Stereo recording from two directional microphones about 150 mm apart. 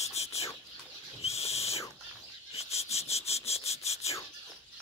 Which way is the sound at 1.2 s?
45° left (ahead or behind).